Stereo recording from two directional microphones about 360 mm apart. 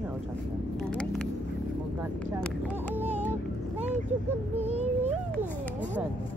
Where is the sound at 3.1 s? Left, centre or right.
Centre.